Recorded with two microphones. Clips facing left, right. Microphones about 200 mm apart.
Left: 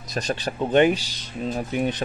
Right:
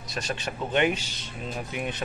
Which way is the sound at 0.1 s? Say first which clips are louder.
Left 6 dB; 40° left (ahead or behind).